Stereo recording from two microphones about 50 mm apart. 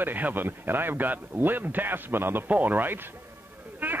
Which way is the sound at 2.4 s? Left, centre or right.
Right.